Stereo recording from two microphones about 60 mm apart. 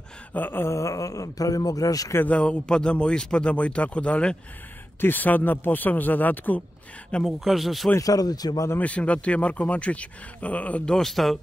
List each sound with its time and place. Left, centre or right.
0.3 s speech: left
0.7 s speech: left
2.2 s a man's voice: left
5.0 s speech: left
7.2 s speech: centre
8.0 s speech: left
8.7 s a man's voice: left
10.9 s speech: centre